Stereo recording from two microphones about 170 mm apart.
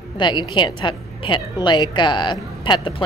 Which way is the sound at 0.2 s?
25° left (ahead or behind).